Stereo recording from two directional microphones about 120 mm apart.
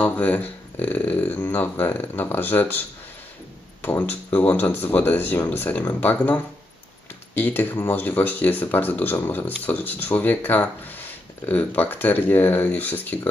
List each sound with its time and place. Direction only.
0.0 s speech: 15° left (ahead or behind)
3.8 s speech: 15° left (ahead or behind)